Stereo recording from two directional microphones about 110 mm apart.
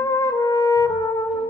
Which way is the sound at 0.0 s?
25° left (ahead or behind).